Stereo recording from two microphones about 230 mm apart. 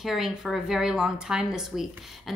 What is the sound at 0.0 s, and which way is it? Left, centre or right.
A woman's voice, centre.